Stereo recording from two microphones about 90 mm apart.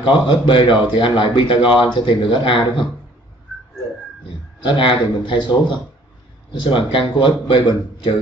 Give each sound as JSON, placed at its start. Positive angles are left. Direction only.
{"t": 0.0, "sound": "a man's voice", "side_deg": 65}
{"t": 4.6, "sound": "a man's voice", "side_deg": 65}